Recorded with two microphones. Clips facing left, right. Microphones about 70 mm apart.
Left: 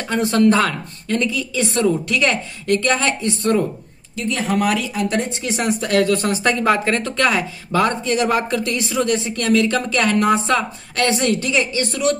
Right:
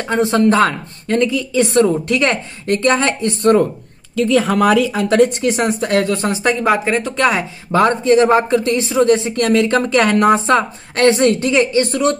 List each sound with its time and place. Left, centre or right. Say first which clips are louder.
0.1 s a woman's voice: right 2 dB; right
5.1 s a woman's voice: right 10 dB; right
5.4 s speech: right 5 dB; right
7.7 s a woman's voice: right 6 dB; right